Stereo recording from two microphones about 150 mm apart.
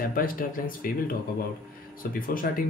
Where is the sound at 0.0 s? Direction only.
70° left (ahead or behind).